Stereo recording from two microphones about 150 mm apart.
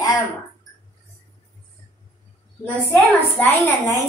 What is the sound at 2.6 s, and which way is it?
Speech, 10° left (ahead or behind).